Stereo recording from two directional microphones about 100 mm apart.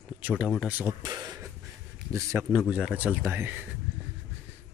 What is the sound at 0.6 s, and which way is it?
Speech, 15° right (ahead or behind).